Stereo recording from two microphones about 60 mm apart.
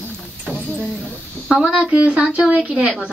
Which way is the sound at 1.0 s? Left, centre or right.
Centre.